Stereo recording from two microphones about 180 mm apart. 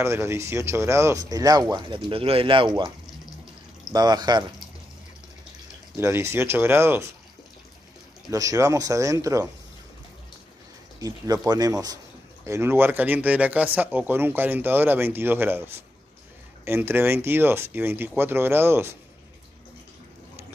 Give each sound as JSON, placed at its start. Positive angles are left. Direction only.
{"t": 0.0, "sound": "speech", "side_deg": -15}
{"t": 3.9, "sound": "speech", "side_deg": -25}
{"t": 5.9, "sound": "speech", "side_deg": -15}
{"t": 8.3, "sound": "speech", "side_deg": -20}
{"t": 11.0, "sound": "speech", "side_deg": -20}